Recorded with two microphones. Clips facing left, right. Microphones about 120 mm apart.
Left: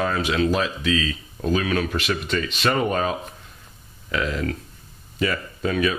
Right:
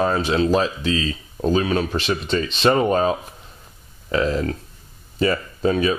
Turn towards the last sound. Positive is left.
turn(degrees=-30)  # may be behind; listen again after turning